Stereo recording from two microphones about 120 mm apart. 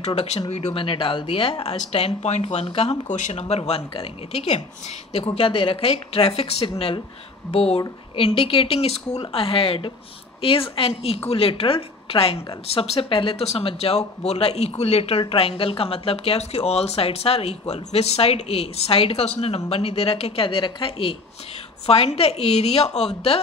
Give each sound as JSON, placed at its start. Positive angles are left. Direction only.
{"t": 0.0, "sound": "a woman's voice", "side_deg": 65}